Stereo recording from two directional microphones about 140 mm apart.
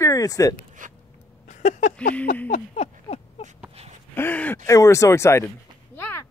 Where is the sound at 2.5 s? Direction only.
50° left (ahead or behind).